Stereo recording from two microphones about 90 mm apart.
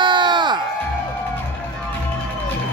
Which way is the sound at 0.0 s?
60° right (ahead or behind).